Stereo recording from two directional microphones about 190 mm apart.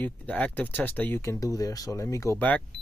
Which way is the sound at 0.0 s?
5° left (ahead or behind).